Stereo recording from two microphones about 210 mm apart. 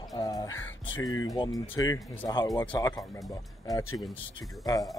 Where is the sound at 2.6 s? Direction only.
10° left (ahead or behind).